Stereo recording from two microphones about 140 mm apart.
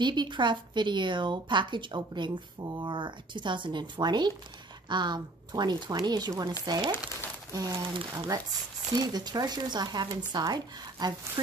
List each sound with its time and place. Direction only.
0.0 s a woman's voice: 35° right (ahead or behind)